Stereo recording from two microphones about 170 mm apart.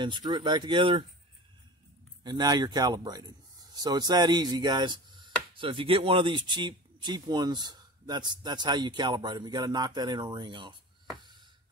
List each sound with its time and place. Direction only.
0.0 s speech: 25° right (ahead or behind)
2.2 s speech: 25° right (ahead or behind)